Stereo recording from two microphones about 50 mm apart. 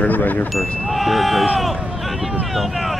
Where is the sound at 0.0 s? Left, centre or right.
Left.